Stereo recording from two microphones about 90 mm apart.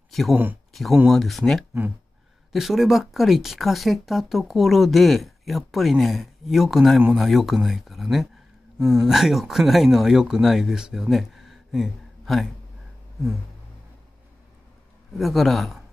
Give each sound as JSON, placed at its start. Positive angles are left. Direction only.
{"t": 0.3, "sound": "speech", "side_deg": -20}
{"t": 1.0, "sound": "speech", "side_deg": 0}
{"t": 15.1, "sound": "speech", "side_deg": 0}